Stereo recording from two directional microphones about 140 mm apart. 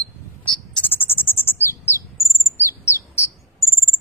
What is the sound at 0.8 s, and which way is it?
Bird, 15° left (ahead or behind).